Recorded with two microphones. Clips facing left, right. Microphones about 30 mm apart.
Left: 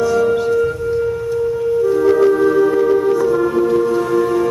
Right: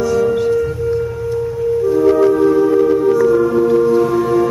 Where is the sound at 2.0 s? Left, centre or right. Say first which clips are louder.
Right 2 dB; centre.